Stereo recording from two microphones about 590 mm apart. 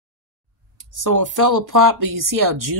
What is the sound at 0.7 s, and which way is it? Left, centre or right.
Speech, right.